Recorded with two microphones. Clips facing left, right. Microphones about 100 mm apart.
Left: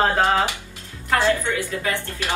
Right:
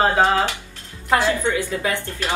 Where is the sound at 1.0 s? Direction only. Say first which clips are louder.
Right 1 dB; 20° right (ahead or behind).